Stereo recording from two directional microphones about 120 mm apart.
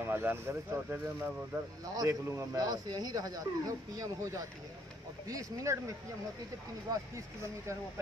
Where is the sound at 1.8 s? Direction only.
30° right (ahead or behind).